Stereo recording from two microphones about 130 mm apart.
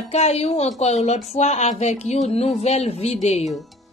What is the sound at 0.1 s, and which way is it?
Speech, 55° left (ahead or behind).